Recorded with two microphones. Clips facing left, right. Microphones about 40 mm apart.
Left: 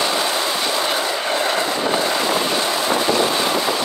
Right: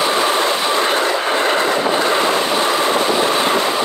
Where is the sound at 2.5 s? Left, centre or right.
Right.